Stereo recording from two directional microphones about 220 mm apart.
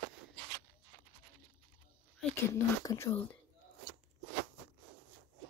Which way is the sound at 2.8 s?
15° left (ahead or behind).